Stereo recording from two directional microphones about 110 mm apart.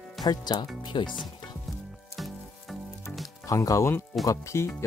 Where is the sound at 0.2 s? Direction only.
40° left (ahead or behind).